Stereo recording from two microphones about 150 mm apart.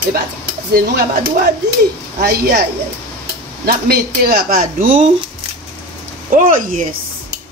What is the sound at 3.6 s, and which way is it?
Speech, 90° right.